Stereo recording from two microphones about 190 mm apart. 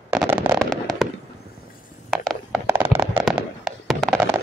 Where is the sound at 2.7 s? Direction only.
10° right (ahead or behind).